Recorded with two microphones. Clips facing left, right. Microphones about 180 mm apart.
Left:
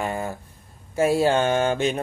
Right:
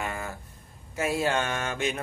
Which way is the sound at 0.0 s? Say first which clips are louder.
Left 7 dB; 30° left (ahead or behind).